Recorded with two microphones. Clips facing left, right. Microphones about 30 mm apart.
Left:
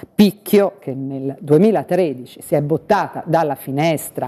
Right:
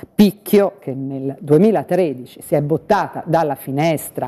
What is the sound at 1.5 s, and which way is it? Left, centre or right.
Speech, left.